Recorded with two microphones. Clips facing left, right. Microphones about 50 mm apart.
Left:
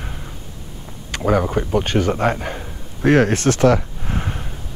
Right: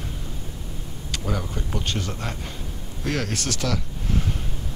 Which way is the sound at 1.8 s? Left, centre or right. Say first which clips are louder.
Left 12 dB; left.